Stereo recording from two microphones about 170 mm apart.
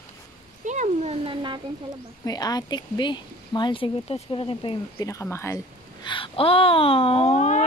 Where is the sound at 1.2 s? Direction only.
30° right (ahead or behind).